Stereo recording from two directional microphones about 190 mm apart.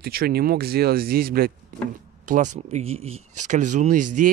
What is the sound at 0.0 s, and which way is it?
Speech, 55° right (ahead or behind).